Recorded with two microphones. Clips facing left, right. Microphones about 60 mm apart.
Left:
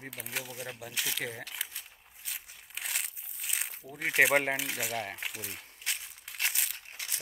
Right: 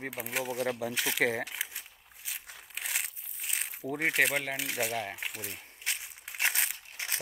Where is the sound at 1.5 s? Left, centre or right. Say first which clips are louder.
Right 3 dB; centre.